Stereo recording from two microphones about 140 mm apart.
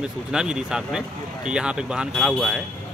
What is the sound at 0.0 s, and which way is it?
Speech, 5° right (ahead or behind).